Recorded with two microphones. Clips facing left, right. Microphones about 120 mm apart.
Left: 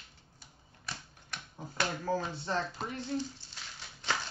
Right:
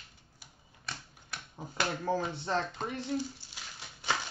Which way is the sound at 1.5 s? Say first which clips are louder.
Right 1 dB; 20° right (ahead or behind).